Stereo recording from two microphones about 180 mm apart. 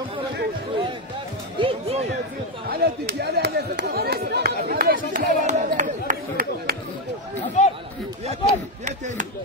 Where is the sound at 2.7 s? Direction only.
60° right (ahead or behind).